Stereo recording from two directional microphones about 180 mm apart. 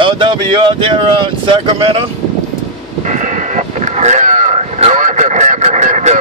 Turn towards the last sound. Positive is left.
turn(degrees=-40)  # may be behind; listen again after turning